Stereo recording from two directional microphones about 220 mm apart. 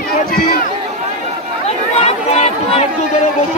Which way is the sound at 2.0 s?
30° left (ahead or behind).